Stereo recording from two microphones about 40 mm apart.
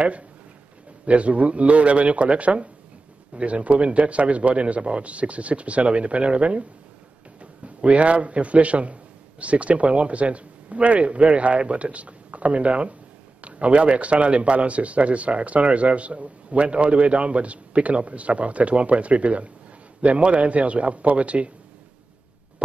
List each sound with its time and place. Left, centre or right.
1.0 s speech: right
7.6 s speech: right